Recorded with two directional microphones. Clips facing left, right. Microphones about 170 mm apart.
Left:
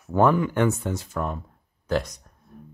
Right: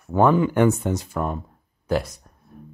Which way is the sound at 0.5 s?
20° right (ahead or behind).